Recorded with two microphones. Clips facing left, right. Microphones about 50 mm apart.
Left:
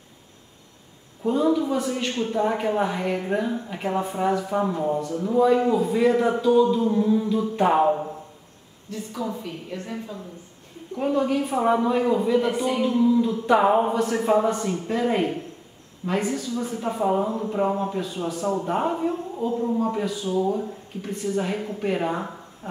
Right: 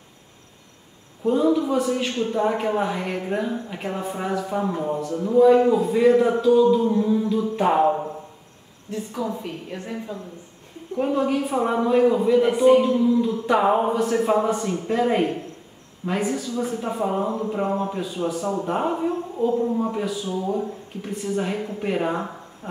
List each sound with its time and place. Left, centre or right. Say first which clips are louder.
1.2 s speech: right 2 dB; centre
7.9 s a sound: even; centre
8.9 s a woman's voice: right 2 dB; right
9.8 s speech: right 2 dB; centre
12.8 s speech: even; centre